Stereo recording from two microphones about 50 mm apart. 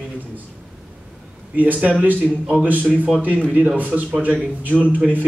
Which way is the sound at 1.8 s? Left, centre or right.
Right.